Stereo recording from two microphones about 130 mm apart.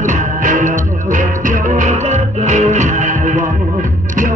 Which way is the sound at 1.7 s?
65° right (ahead or behind).